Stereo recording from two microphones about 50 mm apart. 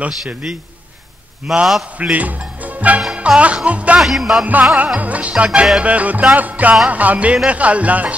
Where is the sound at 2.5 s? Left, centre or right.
Right.